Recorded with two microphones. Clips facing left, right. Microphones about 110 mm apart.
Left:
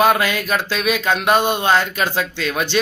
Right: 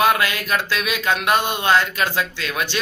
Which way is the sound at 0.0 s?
35° left (ahead or behind).